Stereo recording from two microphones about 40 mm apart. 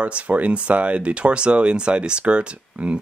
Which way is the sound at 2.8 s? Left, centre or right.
Right.